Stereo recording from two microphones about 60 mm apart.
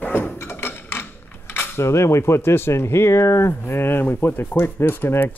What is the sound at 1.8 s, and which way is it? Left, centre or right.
Speech, left.